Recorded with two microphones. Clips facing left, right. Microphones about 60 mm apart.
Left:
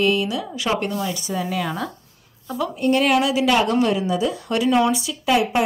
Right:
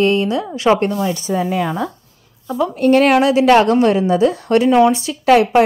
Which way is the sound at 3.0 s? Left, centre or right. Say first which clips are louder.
Right 6 dB; right.